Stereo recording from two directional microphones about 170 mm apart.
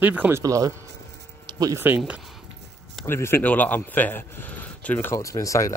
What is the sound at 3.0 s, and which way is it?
A man's voice, 15° left (ahead or behind).